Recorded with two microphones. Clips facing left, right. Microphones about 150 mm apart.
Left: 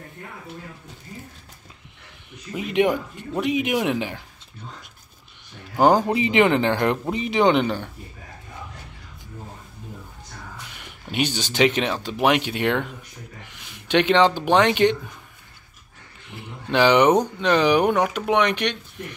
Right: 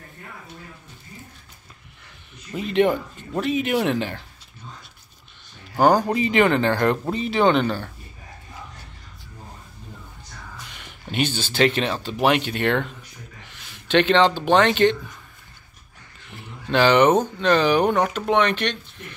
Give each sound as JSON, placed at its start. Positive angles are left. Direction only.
{"t": 2.5, "sound": "speech", "side_deg": 10}
{"t": 5.8, "sound": "speech", "side_deg": 20}
{"t": 10.8, "sound": "speech", "side_deg": 10}
{"t": 16.3, "sound": "speech", "side_deg": 15}